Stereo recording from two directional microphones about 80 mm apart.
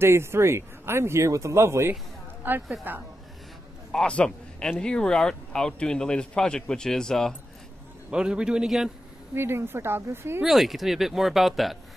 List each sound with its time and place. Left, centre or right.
0.0 s speech: right
3.9 s speech: centre
8.1 s a man's voice: centre
9.3 s speech: right
10.4 s speech: centre